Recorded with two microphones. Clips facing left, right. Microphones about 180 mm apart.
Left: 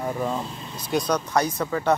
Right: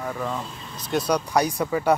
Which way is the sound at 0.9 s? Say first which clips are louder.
Right 1 dB; 10° right (ahead or behind).